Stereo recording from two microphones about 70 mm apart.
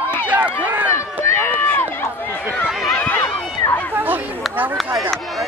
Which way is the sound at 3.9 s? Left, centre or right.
Right.